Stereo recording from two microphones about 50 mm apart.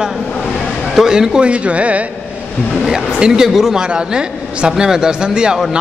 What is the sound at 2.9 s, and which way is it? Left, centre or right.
A man's voice, centre.